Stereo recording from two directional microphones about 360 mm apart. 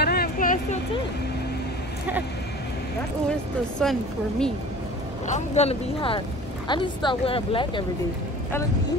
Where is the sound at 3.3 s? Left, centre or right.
Centre.